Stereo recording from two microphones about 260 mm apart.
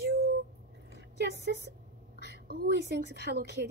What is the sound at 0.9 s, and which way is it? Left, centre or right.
A woman's voice, right.